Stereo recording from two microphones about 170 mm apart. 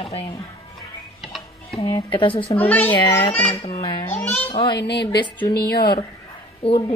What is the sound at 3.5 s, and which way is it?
Speech, 35° left (ahead or behind).